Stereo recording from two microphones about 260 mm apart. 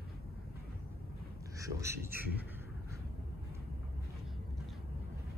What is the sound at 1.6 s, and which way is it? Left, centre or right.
Speech, centre.